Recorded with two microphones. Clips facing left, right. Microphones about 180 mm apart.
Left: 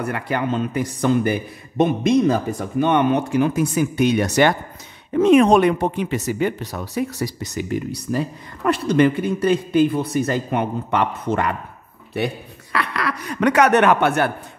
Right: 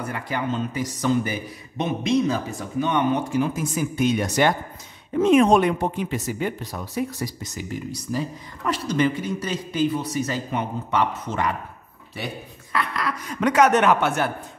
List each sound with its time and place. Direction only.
0.0 s speech: 65° left (ahead or behind)
12.7 s speech: 70° left (ahead or behind)